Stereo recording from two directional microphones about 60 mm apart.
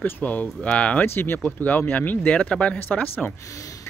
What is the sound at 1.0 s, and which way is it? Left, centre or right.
Speech, left.